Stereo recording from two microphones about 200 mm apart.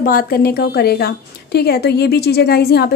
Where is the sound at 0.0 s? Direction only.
45° left (ahead or behind).